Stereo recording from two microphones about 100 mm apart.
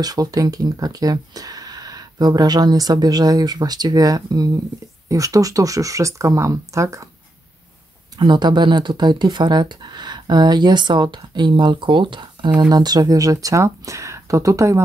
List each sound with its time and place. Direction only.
0.0 s speech: 40° right (ahead or behind)
8.2 s speech: 50° right (ahead or behind)
12.5 s speech: 45° right (ahead or behind)